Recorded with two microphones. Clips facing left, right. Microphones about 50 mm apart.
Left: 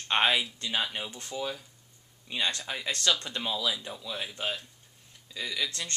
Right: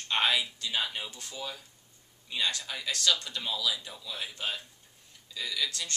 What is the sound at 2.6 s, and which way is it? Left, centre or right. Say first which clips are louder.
Speech: left 1 dB; left.